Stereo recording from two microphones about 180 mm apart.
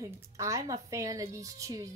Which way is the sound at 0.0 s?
15° right (ahead or behind).